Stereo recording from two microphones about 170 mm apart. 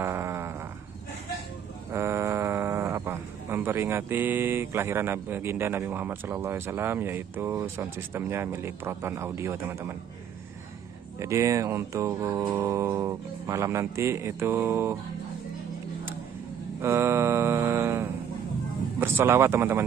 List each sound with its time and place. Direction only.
0.0 s a sound: 15° right (ahead or behind)
1.9 s speech: 15° right (ahead or behind)
11.1 s music: 15° right (ahead or behind)
16.8 s mantra: 15° right (ahead or behind)
18.9 s music: 15° right (ahead or behind)